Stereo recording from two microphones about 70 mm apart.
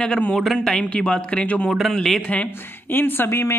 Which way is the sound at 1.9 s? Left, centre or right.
Centre.